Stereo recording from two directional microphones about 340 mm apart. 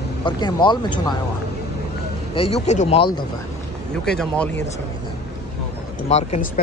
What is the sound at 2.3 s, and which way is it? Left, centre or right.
Speech, centre.